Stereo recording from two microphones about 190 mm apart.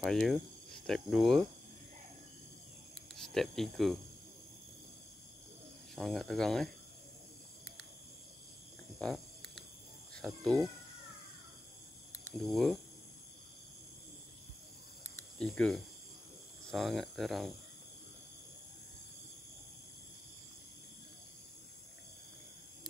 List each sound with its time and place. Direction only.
0.0 s speech: centre (ahead or behind)
3.2 s speech: centre (ahead or behind)
5.9 s speech: centre (ahead or behind)
9.0 s a sound: centre (ahead or behind)
10.1 s speech: 5° left (ahead or behind)
12.4 s speech: centre (ahead or behind)
15.1 s speech: 5° left (ahead or behind)